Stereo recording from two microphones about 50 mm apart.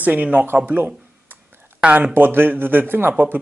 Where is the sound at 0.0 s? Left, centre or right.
Right.